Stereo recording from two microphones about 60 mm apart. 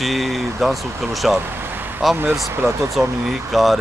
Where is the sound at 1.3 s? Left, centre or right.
Right.